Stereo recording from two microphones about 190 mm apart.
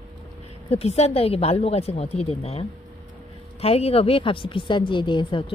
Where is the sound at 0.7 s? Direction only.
35° left (ahead or behind).